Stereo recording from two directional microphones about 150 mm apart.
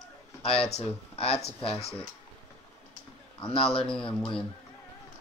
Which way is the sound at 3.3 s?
35° left (ahead or behind).